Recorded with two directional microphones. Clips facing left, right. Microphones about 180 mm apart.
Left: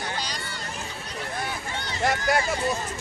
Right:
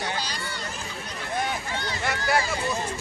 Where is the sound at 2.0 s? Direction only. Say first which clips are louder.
Left 2 dB; 45° left (ahead or behind).